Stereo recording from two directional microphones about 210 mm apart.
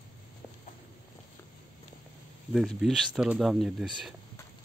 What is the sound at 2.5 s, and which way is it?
Speech, centre (ahead or behind).